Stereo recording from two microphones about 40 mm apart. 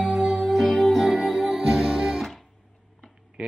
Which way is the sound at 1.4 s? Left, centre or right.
Centre.